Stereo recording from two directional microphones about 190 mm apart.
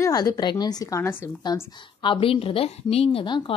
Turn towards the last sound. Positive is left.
turn(degrees=25)  # may be behind; listen again after turning